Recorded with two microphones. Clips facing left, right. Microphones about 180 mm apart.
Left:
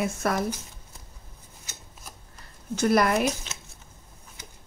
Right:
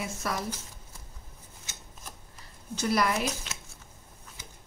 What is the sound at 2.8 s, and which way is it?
Speech, 50° left (ahead or behind).